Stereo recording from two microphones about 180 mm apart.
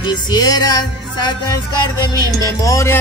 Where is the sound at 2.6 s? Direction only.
15° left (ahead or behind).